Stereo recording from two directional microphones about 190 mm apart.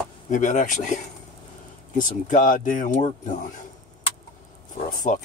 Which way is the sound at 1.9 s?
45° left (ahead or behind).